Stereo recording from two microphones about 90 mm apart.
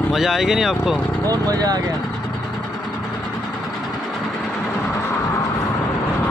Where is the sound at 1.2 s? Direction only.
45° right (ahead or behind).